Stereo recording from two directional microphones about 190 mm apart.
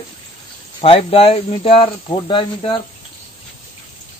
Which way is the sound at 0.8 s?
30° left (ahead or behind).